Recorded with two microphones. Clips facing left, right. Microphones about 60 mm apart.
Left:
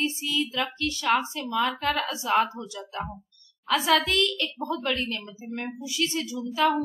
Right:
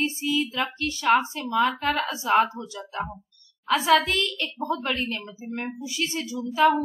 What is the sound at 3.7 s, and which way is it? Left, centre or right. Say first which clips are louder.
A woman's voice: right 2 dB; right.